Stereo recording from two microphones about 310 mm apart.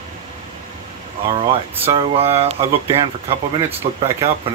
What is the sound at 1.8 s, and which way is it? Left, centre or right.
Speech, centre.